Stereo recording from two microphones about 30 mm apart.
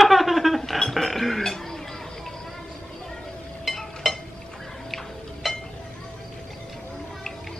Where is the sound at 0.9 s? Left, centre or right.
Centre.